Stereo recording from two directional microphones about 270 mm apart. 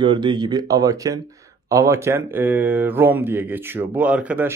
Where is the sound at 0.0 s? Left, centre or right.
Centre.